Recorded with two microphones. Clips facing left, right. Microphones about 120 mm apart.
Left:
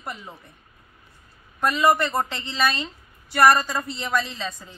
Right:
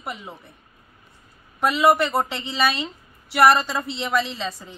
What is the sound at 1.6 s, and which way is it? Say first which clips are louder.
A woman's voice: right 2 dB; 5° right (ahead or behind).